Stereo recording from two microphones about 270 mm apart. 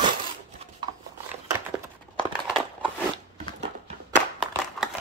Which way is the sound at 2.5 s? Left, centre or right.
Centre.